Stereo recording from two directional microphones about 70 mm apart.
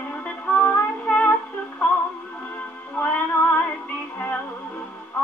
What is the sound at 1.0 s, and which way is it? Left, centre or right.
Music, left.